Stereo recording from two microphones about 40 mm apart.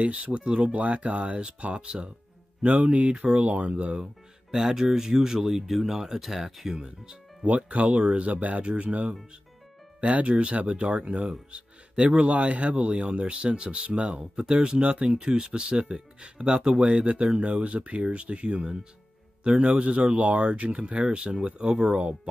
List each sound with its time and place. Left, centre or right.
0.0 s speech: right
2.6 s speech: right
4.5 s speech: centre
7.4 s speech: right